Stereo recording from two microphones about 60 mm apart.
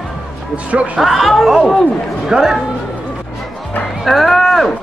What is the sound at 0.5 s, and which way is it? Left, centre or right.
Speech, right.